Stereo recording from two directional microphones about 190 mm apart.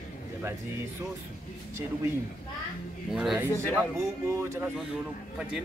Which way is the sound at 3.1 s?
5° right (ahead or behind).